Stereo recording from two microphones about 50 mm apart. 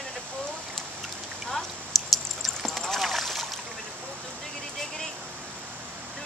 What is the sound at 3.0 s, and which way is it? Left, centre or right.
Splash, centre.